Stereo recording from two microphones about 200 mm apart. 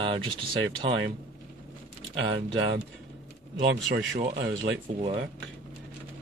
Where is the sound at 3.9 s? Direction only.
60° right (ahead or behind).